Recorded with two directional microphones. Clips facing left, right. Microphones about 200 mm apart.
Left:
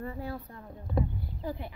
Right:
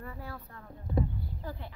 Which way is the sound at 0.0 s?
25° left (ahead or behind).